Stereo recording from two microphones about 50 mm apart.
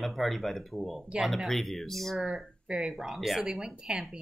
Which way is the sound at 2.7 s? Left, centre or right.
Centre.